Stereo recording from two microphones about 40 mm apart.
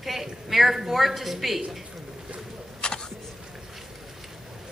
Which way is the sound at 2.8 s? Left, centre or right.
Left.